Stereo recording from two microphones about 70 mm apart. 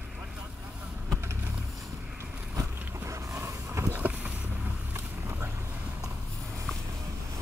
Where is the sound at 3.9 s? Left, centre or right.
Right.